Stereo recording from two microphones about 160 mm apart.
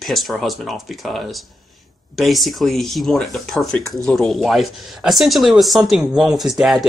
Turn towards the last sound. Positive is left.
turn(degrees=0)  # may be behind; listen again after turning